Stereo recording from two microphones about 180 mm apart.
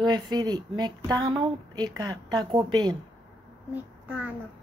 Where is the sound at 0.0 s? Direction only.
25° right (ahead or behind).